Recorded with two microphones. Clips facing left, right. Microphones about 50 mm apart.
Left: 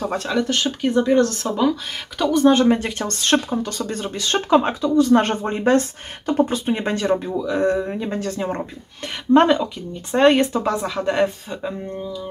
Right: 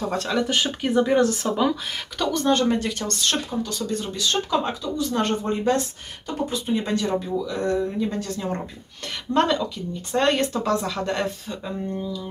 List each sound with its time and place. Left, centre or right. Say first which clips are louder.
0.1 s speech: left 2 dB; centre
0.4 s speech: left 4 dB; centre
2.1 s speech: left 6 dB; centre
3.1 s speech: left 6 dB; left
7.4 s speech: left 4 dB; left; by 12.3 s centre